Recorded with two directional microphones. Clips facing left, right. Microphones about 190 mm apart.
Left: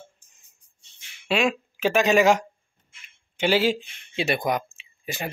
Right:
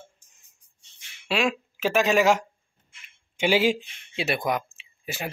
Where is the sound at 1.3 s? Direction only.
Centre (ahead or behind).